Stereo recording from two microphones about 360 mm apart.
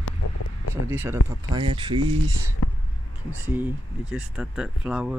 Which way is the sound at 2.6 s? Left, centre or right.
Left.